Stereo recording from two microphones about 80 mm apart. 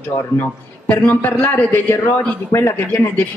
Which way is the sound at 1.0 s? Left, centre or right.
Left.